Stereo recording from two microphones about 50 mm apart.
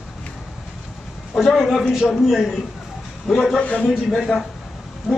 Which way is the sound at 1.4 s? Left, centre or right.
Centre.